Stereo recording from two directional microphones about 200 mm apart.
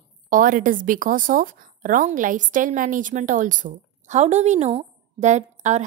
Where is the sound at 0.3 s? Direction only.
45° right (ahead or behind).